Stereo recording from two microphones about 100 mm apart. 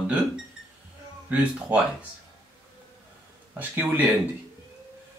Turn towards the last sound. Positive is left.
turn(degrees=-15)  # may be behind; listen again after turning